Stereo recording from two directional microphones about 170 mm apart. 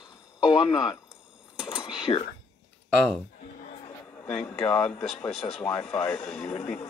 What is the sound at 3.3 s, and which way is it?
Music, 45° left (ahead or behind).